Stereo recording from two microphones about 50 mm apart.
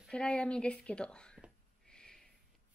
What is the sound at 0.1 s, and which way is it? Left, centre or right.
Speech, left.